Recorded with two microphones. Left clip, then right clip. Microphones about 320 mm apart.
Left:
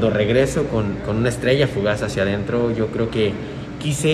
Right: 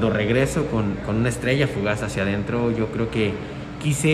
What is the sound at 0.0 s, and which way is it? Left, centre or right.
A man's voice, centre.